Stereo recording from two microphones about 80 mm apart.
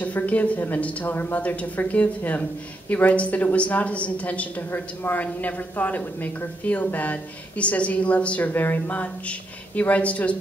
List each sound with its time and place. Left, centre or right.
0.0 s a woman's voice: centre